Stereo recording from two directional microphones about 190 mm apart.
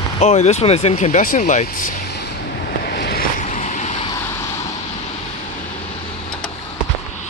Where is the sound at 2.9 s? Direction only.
60° left (ahead or behind).